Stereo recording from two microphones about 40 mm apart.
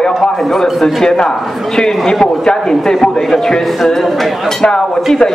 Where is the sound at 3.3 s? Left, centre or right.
Centre.